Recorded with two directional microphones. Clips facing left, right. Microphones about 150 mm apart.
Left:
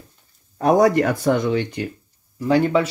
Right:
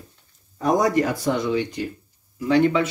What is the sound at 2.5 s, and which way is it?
Speech, 40° left (ahead or behind).